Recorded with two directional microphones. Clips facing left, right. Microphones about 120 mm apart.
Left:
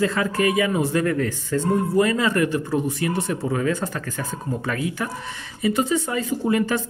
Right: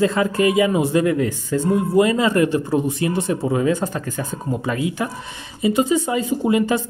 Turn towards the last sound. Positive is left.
turn(degrees=-15)  # may be behind; listen again after turning